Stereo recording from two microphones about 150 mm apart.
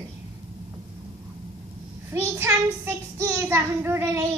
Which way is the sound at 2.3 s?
15° right (ahead or behind).